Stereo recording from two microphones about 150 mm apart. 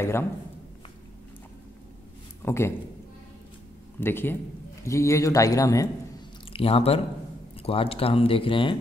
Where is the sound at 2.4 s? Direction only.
15° left (ahead or behind).